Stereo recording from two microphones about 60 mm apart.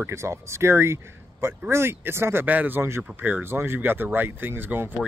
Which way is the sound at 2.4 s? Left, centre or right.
Right.